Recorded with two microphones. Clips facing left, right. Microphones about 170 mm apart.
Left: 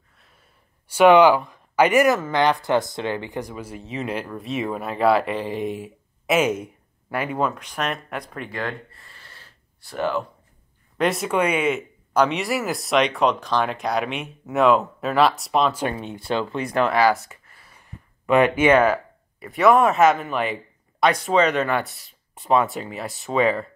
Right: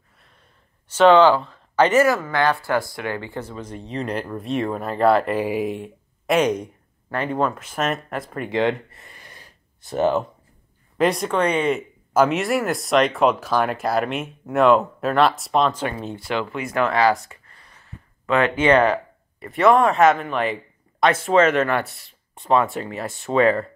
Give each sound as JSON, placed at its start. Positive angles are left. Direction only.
{"t": 0.8, "sound": "speech", "side_deg": 10}
{"t": 8.5, "sound": "speech", "side_deg": -20}
{"t": 11.0, "sound": "speech", "side_deg": 0}
{"t": 16.3, "sound": "speech", "side_deg": 30}
{"t": 16.8, "sound": "speech", "side_deg": 5}
{"t": 17.5, "sound": "a sound", "side_deg": 5}
{"t": 19.4, "sound": "speech", "side_deg": 0}